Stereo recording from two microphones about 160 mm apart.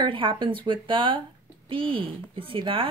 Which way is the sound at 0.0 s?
30° right (ahead or behind).